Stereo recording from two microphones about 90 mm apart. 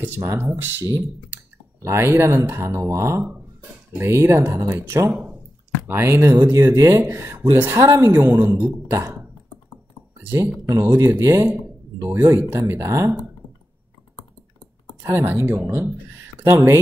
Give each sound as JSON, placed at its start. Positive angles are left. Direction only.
{"t": 0.0, "sound": "speech", "side_deg": -25}
{"t": 7.8, "sound": "speech", "side_deg": -35}
{"t": 8.2, "sound": "speech", "side_deg": -25}
{"t": 8.9, "sound": "speech", "side_deg": -35}
{"t": 10.2, "sound": "speech", "side_deg": -30}
{"t": 15.0, "sound": "speech", "side_deg": -30}